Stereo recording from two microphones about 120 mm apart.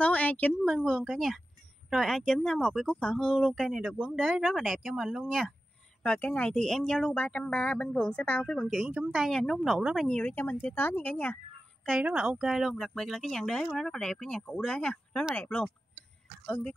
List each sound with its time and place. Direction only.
0.0 s a sound: 10° left (ahead or behind)
0.7 s speech: centre (ahead or behind); by 11.3 s 15° left (ahead or behind)
12.0 s speech: 10° right (ahead or behind); by 16.7 s 10° left (ahead or behind)